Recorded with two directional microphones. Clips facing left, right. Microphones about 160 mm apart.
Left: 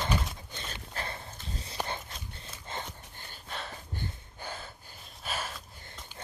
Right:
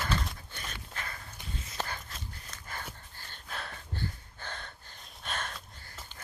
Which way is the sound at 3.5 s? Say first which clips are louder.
Left 1 dB; centre (ahead or behind).